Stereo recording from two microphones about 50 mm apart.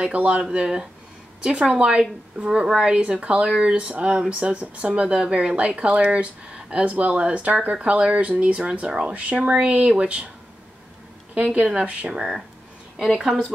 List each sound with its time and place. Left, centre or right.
0.0 s speech: right
11.3 s speech: right; by 13.4 s centre